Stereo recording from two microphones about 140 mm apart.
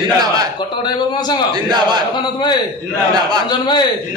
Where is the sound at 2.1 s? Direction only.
30° left (ahead or behind).